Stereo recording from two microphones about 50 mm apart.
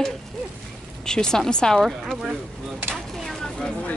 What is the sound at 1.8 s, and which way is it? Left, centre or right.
Speech, centre.